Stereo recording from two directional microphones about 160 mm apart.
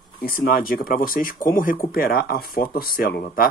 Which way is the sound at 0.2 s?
65° left (ahead or behind).